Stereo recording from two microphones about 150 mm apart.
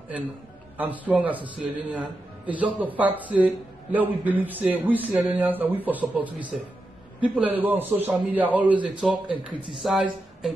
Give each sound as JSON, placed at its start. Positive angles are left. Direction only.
{"t": 0.7, "sound": "a man's voice", "side_deg": -10}